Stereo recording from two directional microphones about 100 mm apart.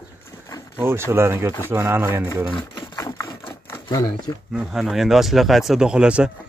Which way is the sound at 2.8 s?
50° left (ahead or behind).